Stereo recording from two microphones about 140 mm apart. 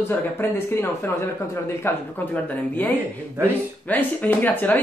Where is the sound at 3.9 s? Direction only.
10° left (ahead or behind).